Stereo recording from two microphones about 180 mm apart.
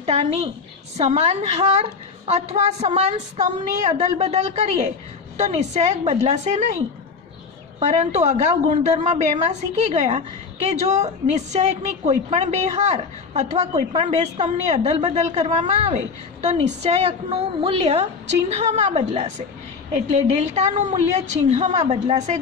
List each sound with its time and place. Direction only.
0.0 s a woman's voice: 35° right (ahead or behind)
7.8 s a woman's voice: 40° right (ahead or behind)